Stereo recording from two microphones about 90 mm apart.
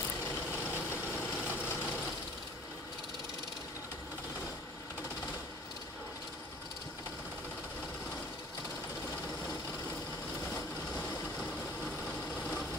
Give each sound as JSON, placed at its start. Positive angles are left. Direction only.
{"t": 0.5, "sound": "vehicle", "side_deg": 20}
{"t": 10.5, "sound": "vehicle", "side_deg": 15}